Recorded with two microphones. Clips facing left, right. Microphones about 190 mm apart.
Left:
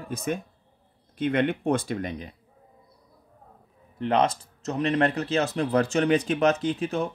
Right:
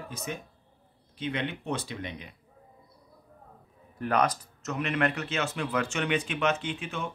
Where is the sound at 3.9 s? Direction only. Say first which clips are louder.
Left 3 dB; 25° left (ahead or behind).